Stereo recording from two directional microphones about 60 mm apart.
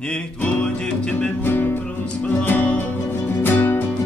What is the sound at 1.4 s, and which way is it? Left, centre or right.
Music, left.